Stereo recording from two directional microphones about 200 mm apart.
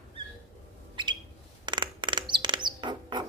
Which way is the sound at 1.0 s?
25° right (ahead or behind).